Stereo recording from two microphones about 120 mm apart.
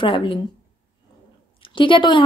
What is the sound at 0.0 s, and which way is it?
Speech, 45° left (ahead or behind).